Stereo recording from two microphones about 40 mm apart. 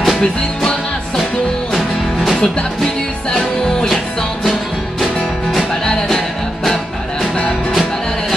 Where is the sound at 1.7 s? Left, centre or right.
Centre.